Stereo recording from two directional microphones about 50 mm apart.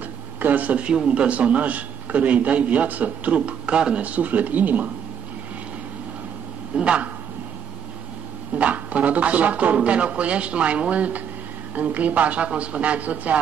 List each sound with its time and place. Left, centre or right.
0.4 s a man's voice: right
6.7 s a woman's voice: right
8.5 s a man's voice: right